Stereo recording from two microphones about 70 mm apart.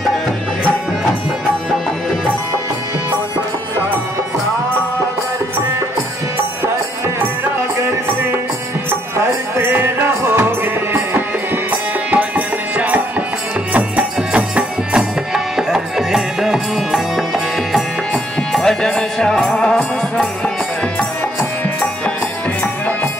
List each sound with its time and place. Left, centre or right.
9.1 s music: right; by 17.0 s centre
18.5 s music: centre